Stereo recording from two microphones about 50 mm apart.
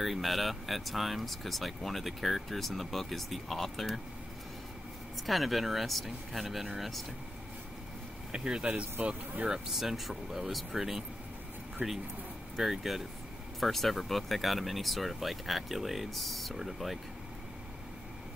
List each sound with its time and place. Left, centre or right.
0.0 s speech: centre
5.1 s speech: centre
8.3 s speech: centre
9.0 s speech: right
9.5 s speech: centre
11.8 s speech: centre
12.5 s speech: centre